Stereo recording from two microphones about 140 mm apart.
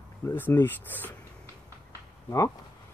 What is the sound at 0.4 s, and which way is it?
Speech, 15° left (ahead or behind).